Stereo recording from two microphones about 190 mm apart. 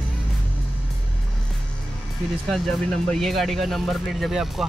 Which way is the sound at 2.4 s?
Centre (ahead or behind).